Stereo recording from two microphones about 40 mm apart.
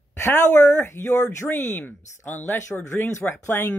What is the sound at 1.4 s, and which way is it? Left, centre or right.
Speech, left.